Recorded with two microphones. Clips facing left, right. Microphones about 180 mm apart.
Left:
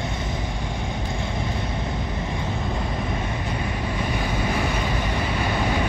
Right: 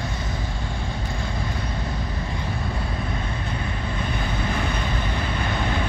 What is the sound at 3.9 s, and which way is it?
Vehicle, 10° left (ahead or behind).